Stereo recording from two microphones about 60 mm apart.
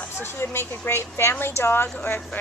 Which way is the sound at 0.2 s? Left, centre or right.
Left.